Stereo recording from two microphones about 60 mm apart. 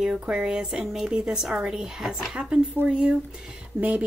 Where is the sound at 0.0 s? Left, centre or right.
Centre.